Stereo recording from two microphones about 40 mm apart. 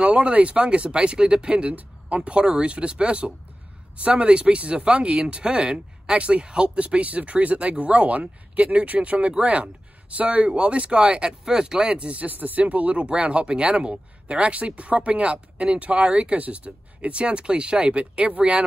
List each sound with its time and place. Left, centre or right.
0.0 s speech: right
9.3 s speech: right
12.3 s speech: right